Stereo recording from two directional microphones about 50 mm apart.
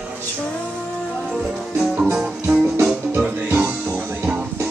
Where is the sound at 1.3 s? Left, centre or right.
Centre.